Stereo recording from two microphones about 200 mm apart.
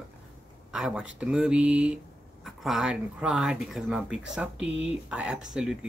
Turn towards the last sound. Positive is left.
turn(degrees=-5)  # may be behind; listen again after turning